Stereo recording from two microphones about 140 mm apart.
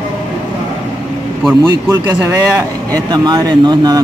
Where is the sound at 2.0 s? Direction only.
20° right (ahead or behind).